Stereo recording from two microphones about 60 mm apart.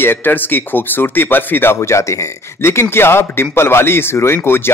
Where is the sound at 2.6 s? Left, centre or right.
Left.